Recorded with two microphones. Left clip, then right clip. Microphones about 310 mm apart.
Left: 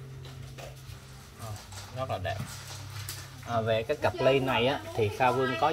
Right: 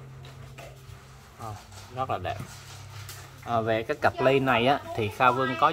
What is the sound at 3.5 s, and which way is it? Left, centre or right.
Speech, centre.